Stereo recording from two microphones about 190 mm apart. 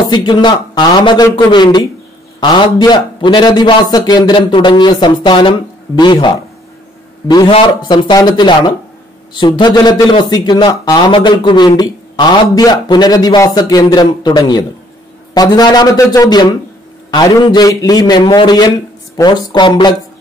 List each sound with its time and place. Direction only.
0.1 s speech: 25° left (ahead or behind)